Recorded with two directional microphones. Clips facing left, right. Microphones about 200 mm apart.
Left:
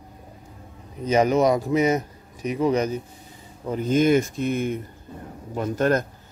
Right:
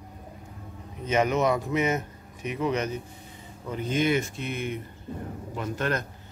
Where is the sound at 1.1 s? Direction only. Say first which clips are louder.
Left 5 dB; 35° left (ahead or behind).